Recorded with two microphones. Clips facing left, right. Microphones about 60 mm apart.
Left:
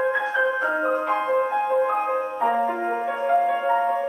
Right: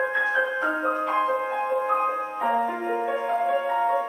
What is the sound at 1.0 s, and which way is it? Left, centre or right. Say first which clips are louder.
Music: left 1 dB; centre.